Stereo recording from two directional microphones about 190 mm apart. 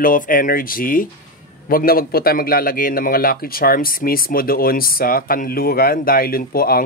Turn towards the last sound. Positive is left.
turn(degrees=50)  # may be behind; listen again after turning